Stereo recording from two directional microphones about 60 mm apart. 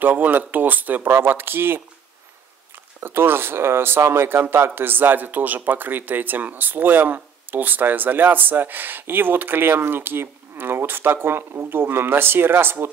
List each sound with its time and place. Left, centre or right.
0.0 s speech: right
1.0 s speech: right
3.0 s speech: right